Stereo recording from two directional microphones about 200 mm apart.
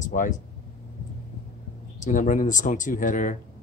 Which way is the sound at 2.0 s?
40° left (ahead or behind).